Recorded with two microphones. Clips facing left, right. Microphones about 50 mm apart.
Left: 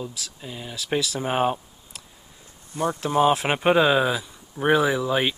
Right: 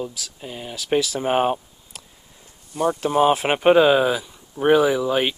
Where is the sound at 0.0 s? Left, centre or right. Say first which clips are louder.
Right 3 dB; centre.